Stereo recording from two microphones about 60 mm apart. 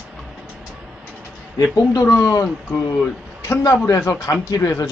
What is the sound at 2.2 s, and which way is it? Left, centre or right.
A man's voice, left.